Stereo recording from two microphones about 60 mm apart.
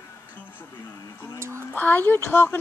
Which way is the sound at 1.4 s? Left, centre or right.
Right.